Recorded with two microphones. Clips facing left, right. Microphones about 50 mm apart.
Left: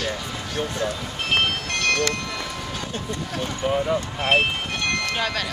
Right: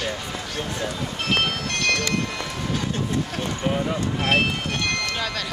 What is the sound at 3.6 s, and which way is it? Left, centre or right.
Speech, centre.